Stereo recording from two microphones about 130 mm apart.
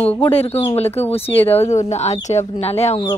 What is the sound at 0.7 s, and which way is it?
Speech, 55° left (ahead or behind).